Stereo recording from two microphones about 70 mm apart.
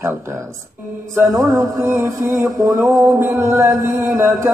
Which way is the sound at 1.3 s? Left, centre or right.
Right.